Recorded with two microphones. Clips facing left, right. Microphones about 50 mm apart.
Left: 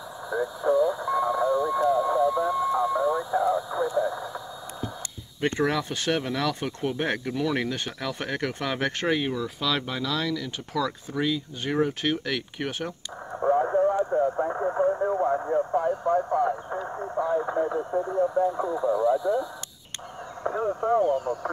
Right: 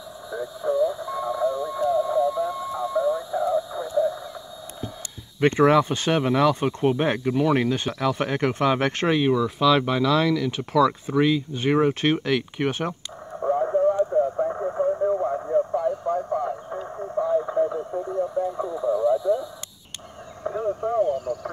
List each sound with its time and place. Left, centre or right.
0.3 s radio: left
2.0 s a sound: centre
5.4 s speech: right
7.0 s speech: centre; by 12.2 s right
12.3 s speech: centre
13.4 s radio: centre
16.3 s radio: centre
18.2 s speech: centre
20.4 s speech: centre